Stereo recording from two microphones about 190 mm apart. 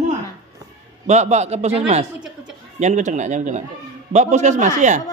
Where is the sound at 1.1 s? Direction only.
35° right (ahead or behind).